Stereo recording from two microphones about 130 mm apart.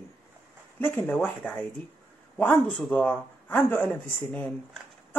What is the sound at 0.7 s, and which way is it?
Speech, 15° left (ahead or behind).